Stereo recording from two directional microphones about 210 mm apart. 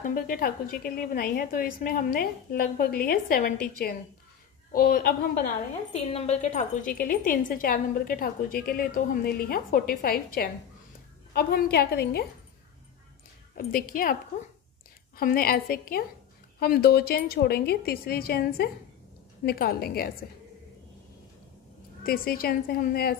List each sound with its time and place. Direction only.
0.0 s a woman's voice: 40° left (ahead or behind)
5.9 s a woman's voice: 30° left (ahead or behind); by 12.3 s 50° left (ahead or behind)
13.6 s a woman's voice: 45° left (ahead or behind)
15.1 s a woman's voice: 45° left (ahead or behind)
22.0 s a woman's voice: 45° left (ahead or behind)